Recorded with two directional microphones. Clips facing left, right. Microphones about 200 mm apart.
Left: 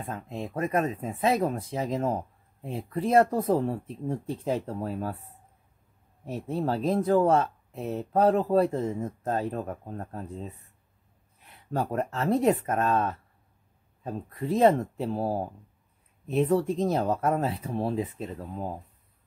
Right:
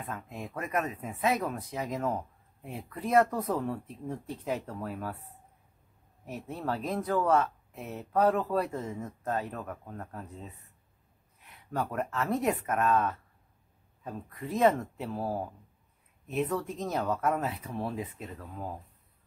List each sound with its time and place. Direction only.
0.0 s speech: 30° left (ahead or behind)
6.2 s speech: 30° left (ahead or behind)
11.7 s speech: 30° left (ahead or behind)